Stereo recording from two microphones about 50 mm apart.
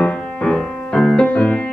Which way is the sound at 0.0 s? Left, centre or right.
Left.